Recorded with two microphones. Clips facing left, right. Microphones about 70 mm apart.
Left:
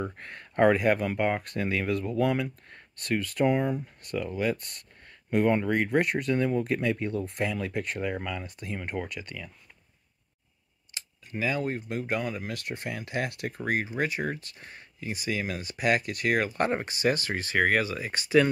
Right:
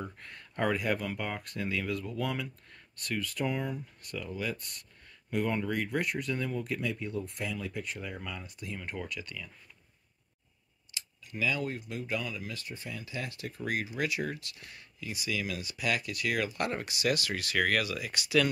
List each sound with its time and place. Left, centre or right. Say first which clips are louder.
0.0 s speech: left 7 dB; left
8.5 s speech: left 5 dB; left
11.0 s speech: left 2 dB; left
13.6 s speech: left 4 dB; left